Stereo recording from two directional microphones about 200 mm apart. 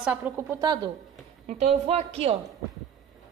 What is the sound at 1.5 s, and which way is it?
Speech, 35° right (ahead or behind).